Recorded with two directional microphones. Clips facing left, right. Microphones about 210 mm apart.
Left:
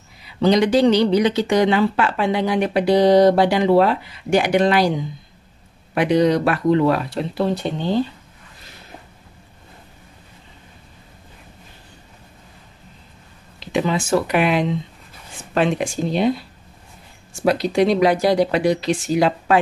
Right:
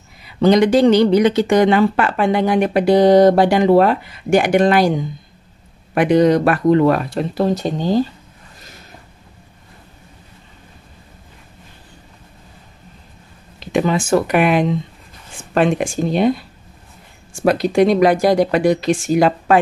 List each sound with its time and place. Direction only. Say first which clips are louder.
0.2 s speech: right 3 dB; 50° right (ahead or behind)
13.7 s speech: right 3 dB; 50° right (ahead or behind)
17.4 s speech: right 3 dB; 50° right (ahead or behind)